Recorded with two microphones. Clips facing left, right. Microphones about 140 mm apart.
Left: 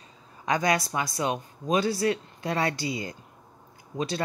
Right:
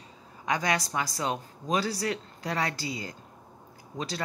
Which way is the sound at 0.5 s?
25° left (ahead or behind).